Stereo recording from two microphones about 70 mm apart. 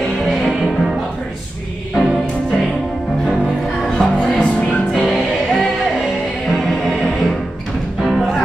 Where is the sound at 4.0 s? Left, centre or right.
Centre.